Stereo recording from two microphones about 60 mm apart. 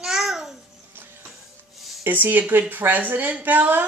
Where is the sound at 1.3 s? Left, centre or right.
Centre.